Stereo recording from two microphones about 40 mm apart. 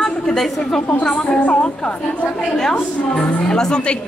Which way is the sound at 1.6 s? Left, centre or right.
Left.